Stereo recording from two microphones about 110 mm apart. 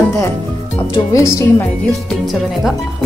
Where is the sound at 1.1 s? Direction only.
30° left (ahead or behind).